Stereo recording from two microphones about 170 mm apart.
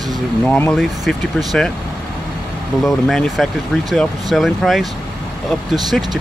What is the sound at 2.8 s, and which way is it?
Speech, centre (ahead or behind).